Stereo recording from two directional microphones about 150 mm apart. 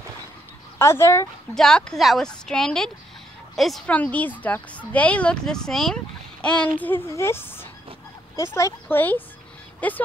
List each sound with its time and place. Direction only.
0.7 s speech: 15° left (ahead or behind)
1.5 s speech: 5° left (ahead or behind)